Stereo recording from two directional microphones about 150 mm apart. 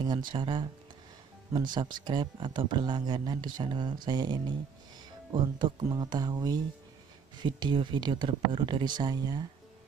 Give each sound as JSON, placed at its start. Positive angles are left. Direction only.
{"t": 0.0, "sound": "speech", "side_deg": -30}